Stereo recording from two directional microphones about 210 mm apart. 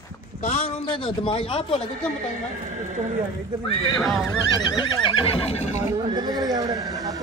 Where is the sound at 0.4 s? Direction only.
35° left (ahead or behind).